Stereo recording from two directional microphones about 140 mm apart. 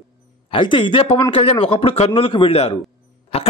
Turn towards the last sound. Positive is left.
turn(degrees=50)  # may be behind; listen again after turning